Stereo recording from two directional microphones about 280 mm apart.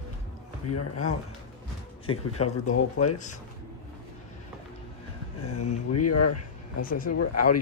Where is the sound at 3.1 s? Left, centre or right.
Left.